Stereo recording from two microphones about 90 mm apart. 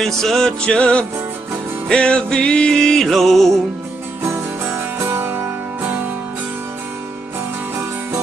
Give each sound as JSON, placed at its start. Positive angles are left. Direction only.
{"t": 0.0, "sound": "music", "side_deg": 5}
{"t": 4.9, "sound": "music", "side_deg": -25}